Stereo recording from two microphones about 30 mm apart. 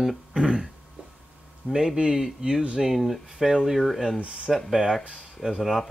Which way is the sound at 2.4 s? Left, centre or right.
Right.